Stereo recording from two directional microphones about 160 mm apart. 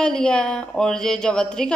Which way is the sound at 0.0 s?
5° left (ahead or behind).